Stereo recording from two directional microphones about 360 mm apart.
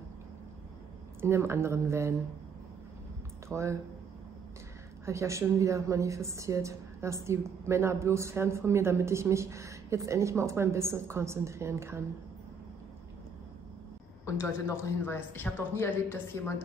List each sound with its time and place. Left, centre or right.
1.2 s a woman's voice: centre
3.4 s a woman's voice: centre
5.0 s a woman's voice: centre
14.4 s speech: centre